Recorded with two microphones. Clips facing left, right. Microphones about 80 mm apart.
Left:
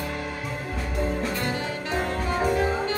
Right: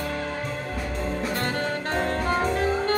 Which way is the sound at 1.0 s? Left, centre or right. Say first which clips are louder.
Left 3 dB; centre.